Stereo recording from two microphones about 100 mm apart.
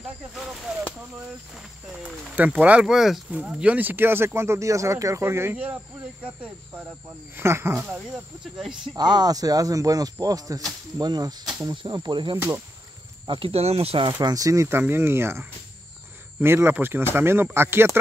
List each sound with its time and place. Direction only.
0.3 s speech: 5° right (ahead or behind)
1.9 s speech: 5° right (ahead or behind)
7.3 s speech: 25° right (ahead or behind)
8.5 s speech: 5° right (ahead or behind)
8.9 s speech: 45° right (ahead or behind)
13.3 s speech: 70° right (ahead or behind)
14.2 s speech: 35° right (ahead or behind)